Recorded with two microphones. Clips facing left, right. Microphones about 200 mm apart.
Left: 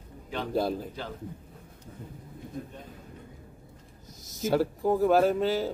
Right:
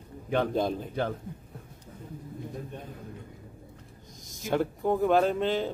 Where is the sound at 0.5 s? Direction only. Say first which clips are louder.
Even; 5° left (ahead or behind).